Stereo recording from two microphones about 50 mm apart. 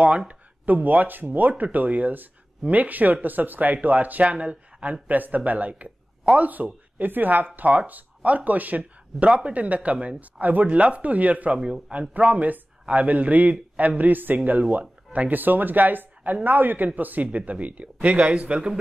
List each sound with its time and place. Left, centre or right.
0.3 s speech: right
5.0 s speech: right